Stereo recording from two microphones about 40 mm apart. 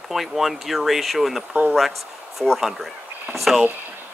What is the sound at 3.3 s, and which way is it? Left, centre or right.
Speech, centre.